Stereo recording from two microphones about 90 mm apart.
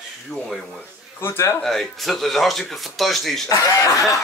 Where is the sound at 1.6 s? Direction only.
Centre (ahead or behind).